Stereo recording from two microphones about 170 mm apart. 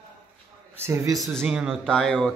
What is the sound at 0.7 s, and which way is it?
Speech, 15° right (ahead or behind).